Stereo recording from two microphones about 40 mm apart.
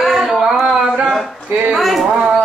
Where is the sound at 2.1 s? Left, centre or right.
Centre.